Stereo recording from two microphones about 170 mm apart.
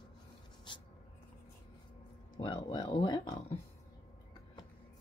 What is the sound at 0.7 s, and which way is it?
Writing, 30° left (ahead or behind).